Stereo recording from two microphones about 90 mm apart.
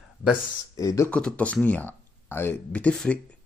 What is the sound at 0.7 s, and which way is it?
Speech, 35° left (ahead or behind).